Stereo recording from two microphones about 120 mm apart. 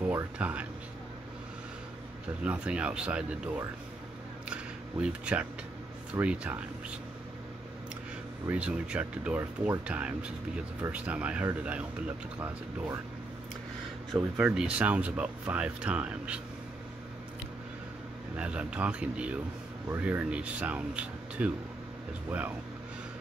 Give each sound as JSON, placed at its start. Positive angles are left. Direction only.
{"t": 0.0, "sound": "speech", "side_deg": -15}
{"t": 2.4, "sound": "speech", "side_deg": -10}
{"t": 5.0, "sound": "speech", "side_deg": -10}
{"t": 8.5, "sound": "speech", "side_deg": -10}
{"t": 14.3, "sound": "speech", "side_deg": -10}
{"t": 18.3, "sound": "speech", "side_deg": -10}